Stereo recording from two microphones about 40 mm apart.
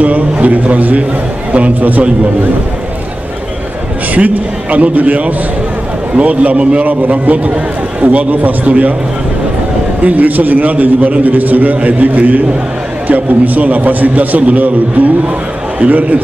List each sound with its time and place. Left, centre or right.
0.0 s a man's voice: right
4.1 s a man's voice: right
6.9 s a man's voice: right
10.0 s a man's voice: right